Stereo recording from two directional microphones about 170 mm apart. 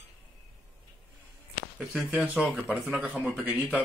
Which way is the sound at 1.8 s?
5° right (ahead or behind).